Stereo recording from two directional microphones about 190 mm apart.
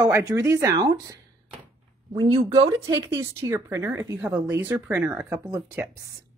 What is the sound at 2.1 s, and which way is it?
A woman's voice, 25° right (ahead or behind).